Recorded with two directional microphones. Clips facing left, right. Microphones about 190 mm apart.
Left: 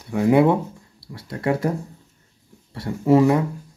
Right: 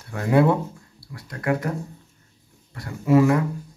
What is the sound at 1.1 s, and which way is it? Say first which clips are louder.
Speech: left 2 dB; 25° left (ahead or behind).